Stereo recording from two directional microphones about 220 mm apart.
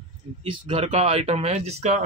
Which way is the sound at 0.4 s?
25° right (ahead or behind).